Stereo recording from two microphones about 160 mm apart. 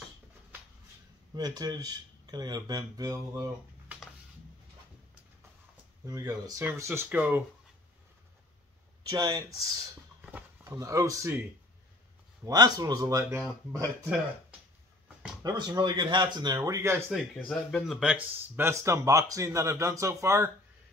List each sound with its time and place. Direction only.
1.3 s speech: 25° right (ahead or behind)
6.0 s speech: 20° right (ahead or behind)
9.1 s speech: 20° right (ahead or behind)
10.2 s speech: 10° right (ahead or behind)
12.4 s speech: 25° right (ahead or behind)
15.4 s speech: 25° right (ahead or behind)
17.1 s speech: centre (ahead or behind); by 20.5 s 15° right (ahead or behind)